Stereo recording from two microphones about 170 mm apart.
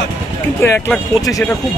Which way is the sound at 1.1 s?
20° left (ahead or behind).